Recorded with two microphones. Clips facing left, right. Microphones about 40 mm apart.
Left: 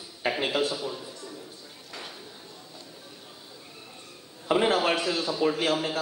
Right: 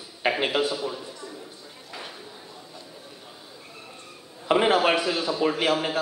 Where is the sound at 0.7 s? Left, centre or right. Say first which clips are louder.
Right 3 dB; centre.